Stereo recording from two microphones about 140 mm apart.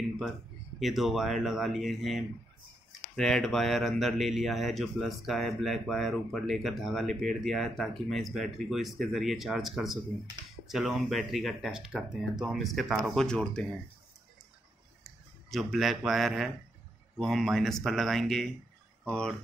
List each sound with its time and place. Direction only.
0.7 s a man's voice: centre (ahead or behind)
15.5 s a man's voice: centre (ahead or behind)